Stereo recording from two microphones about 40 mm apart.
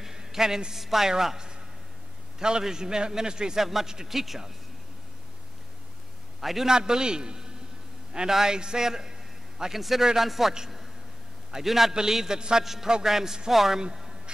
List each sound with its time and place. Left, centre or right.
0.0 s a man's voice: centre
3.6 s a man's voice: centre
6.4 s a man's voice: centre
6.7 s a man's voice: centre
11.5 s a man's voice: centre